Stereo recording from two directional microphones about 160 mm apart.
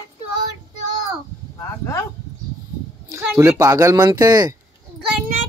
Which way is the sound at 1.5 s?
15° left (ahead or behind).